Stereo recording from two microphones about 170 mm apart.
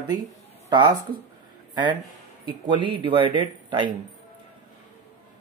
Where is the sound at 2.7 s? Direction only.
30° right (ahead or behind).